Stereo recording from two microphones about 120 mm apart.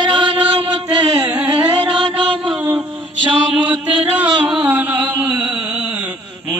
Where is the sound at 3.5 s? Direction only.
10° right (ahead or behind).